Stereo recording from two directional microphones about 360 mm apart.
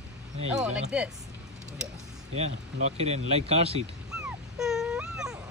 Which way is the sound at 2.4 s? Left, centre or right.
Centre.